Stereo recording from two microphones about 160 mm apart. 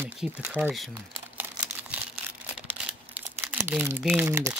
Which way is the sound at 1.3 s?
10° right (ahead or behind).